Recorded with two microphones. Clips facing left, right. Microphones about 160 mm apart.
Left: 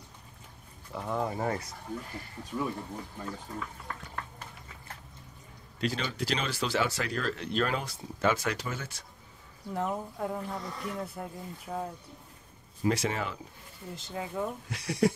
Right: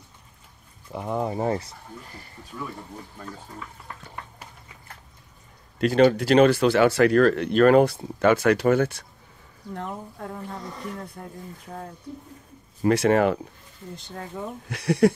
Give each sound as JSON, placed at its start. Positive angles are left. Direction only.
{"t": 0.9, "sound": "speech", "side_deg": -20}
{"t": 3.5, "sound": "a sound", "side_deg": -10}
{"t": 5.8, "sound": "speech", "side_deg": -60}
{"t": 9.8, "sound": "speech", "side_deg": 5}
{"t": 12.8, "sound": "speech", "side_deg": -60}
{"t": 13.9, "sound": "speech", "side_deg": 5}
{"t": 14.7, "sound": "speech", "side_deg": -60}